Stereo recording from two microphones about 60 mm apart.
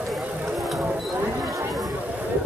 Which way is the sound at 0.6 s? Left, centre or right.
Centre.